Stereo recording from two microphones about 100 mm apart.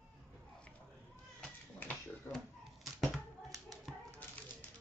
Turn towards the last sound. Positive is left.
turn(degrees=0)  # may be behind; listen again after turning